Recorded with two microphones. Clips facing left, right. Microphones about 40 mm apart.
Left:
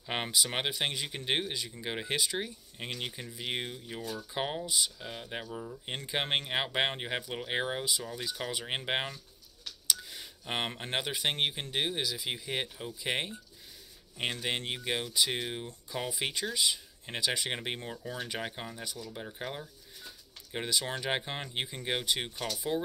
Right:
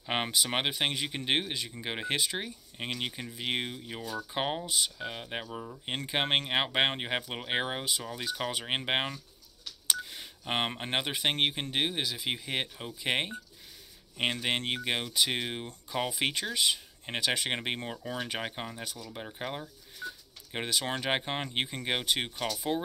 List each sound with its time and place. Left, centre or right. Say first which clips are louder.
0.0 s speech: right 3 dB; centre
0.7 s speech: right 2 dB; right
5.9 s speech: right 3 dB; right
12.0 s speech: right 1 dB; right
12.3 s speech: right 2 dB; right
17.2 s speech: right 2 dB; right
17.5 s speech: right 3 dB; right
20.5 s speech: right 1 dB; right